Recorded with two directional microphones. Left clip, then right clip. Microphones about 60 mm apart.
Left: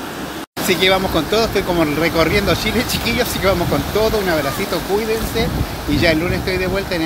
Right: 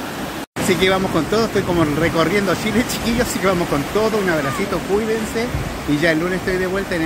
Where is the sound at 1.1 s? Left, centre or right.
Right.